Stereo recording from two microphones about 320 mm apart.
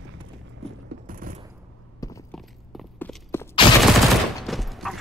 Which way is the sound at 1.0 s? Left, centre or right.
Right.